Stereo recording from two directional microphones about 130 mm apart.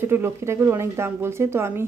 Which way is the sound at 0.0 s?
20° right (ahead or behind).